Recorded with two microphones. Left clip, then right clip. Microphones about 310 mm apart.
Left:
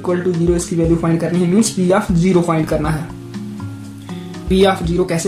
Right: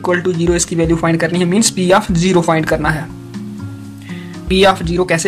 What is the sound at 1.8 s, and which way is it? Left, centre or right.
Speech, right.